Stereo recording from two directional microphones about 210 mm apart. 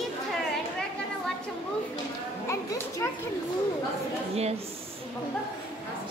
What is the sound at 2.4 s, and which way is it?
Children playing, 10° left (ahead or behind).